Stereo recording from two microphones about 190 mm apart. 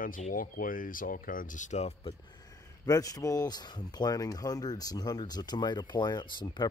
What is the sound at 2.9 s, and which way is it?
Speech, 20° left (ahead or behind).